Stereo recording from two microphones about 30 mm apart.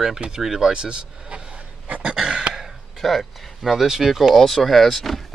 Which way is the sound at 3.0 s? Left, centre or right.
Centre.